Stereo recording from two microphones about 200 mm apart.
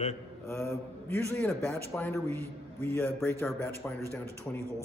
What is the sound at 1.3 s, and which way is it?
A man's voice, 5° left (ahead or behind).